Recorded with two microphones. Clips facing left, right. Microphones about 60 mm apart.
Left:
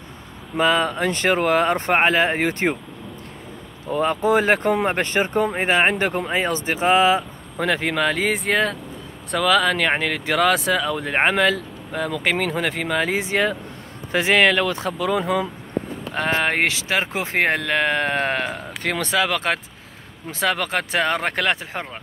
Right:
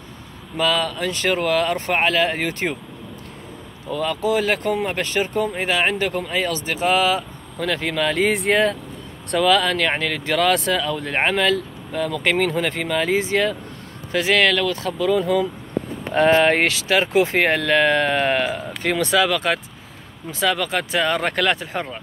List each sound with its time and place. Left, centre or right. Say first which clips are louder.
0.6 s speech: left 2 dB; left
3.9 s speech: left 2 dB; left; by 16.6 s centre
16.6 s speech: right 3 dB; left
19.0 s speech: right 2 dB; left